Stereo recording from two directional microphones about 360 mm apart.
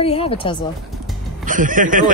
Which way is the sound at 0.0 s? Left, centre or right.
Centre.